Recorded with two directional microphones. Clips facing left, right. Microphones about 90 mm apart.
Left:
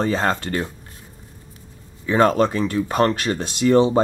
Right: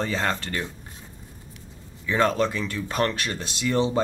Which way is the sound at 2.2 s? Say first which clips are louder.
Left 6 dB; 45° left (ahead or behind).